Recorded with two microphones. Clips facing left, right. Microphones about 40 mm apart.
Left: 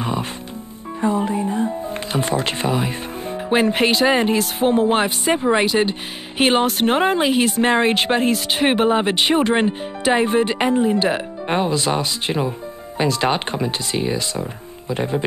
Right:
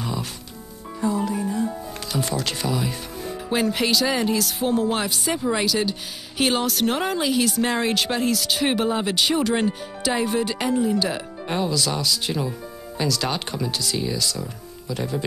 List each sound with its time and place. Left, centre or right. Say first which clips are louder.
0.0 s music: left 5 dB; left
1.0 s speech: left 4 dB; left